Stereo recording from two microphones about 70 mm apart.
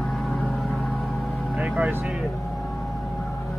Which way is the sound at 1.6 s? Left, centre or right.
Right.